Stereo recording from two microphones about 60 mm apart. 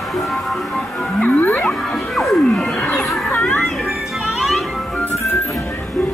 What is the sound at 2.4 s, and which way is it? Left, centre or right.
Music, centre.